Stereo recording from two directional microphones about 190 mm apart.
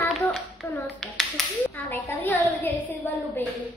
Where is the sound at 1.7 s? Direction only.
10° left (ahead or behind).